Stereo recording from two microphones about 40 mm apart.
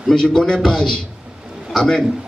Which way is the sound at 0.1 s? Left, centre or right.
Centre.